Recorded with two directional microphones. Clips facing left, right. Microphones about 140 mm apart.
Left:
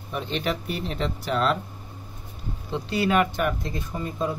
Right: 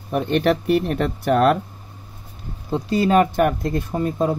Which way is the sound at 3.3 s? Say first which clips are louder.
Right 8 dB; 55° right (ahead or behind).